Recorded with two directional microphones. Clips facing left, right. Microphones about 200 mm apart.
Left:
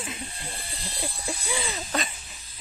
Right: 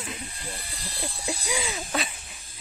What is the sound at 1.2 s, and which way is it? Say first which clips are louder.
Speech: right 2 dB; 10° right (ahead or behind).